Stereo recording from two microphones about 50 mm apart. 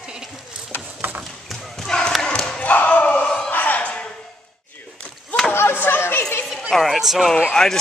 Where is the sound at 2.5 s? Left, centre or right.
Left.